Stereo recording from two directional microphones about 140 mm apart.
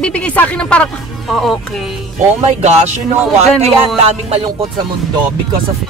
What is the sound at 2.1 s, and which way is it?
Speech, 55° right (ahead or behind).